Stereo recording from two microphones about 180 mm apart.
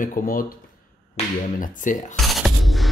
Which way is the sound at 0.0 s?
50° left (ahead or behind).